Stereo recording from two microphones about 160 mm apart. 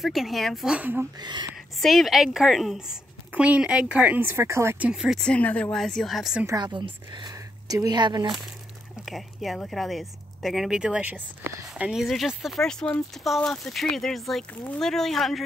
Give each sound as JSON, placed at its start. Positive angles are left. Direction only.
{"t": 0.0, "sound": "speech", "side_deg": 0}
{"t": 1.2, "sound": "a woman's voice", "side_deg": -25}
{"t": 1.8, "sound": "speech", "side_deg": 0}
{"t": 6.4, "sound": "a woman's voice", "side_deg": -25}
{"t": 9.0, "sound": "speech", "side_deg": 0}